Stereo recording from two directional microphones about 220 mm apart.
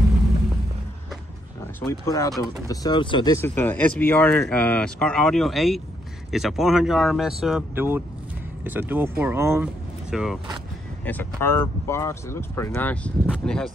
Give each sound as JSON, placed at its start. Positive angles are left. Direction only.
{"t": 1.8, "sound": "speech", "side_deg": 15}
{"t": 11.1, "sound": "speech", "side_deg": 10}